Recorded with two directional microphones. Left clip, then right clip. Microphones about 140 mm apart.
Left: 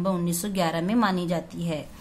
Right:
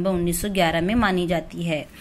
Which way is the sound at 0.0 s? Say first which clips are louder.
Right 4 dB; 15° right (ahead or behind).